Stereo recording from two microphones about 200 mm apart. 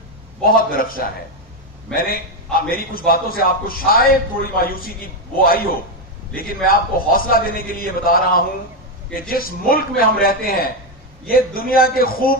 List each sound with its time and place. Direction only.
0.5 s a man's voice: 45° left (ahead or behind)